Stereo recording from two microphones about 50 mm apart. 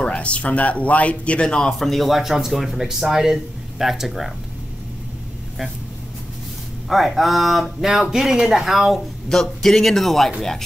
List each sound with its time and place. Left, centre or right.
0.0 s speech: left
1.7 s speech: centre
6.9 s speech: centre
9.3 s speech: centre